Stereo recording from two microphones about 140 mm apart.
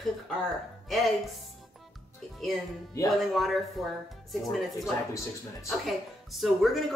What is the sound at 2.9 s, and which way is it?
Speech, 25° left (ahead or behind).